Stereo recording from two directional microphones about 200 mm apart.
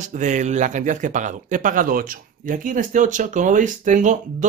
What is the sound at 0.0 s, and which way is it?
Speech, 40° right (ahead or behind).